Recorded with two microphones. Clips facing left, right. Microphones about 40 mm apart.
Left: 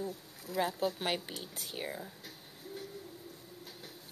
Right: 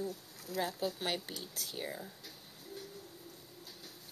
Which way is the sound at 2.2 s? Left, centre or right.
Left.